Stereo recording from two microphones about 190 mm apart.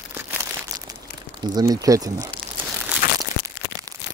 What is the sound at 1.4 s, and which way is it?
Speech, 20° right (ahead or behind).